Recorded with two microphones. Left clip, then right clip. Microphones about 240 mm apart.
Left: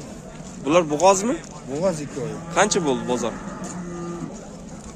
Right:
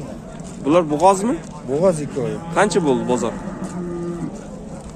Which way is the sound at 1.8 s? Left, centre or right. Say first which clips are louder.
Right 6 dB; right.